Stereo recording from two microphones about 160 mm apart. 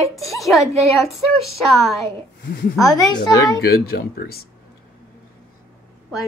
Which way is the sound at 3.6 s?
80° left.